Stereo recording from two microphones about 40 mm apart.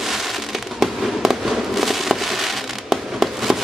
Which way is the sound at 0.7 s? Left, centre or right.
Centre.